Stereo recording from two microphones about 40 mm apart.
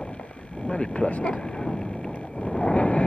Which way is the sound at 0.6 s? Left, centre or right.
Left.